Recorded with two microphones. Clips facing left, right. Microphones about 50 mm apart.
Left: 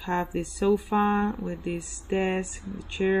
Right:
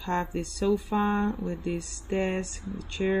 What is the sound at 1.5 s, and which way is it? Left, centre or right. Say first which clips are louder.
Speech: even; centre.